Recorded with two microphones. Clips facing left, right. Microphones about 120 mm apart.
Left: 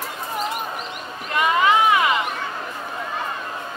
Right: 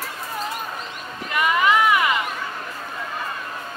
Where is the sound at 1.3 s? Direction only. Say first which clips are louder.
Left 1 dB; 25° left (ahead or behind).